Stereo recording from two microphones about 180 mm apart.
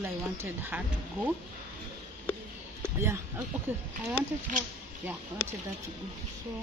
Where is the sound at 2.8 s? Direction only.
15° right (ahead or behind).